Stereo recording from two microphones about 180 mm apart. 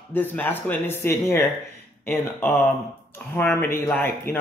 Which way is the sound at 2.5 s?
10° left (ahead or behind).